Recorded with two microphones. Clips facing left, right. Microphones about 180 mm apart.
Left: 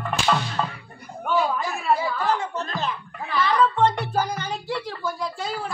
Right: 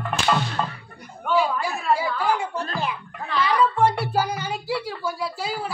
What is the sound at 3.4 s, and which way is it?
Music, 10° right (ahead or behind).